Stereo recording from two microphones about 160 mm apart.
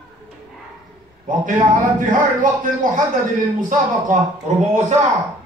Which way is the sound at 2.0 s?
55° right (ahead or behind).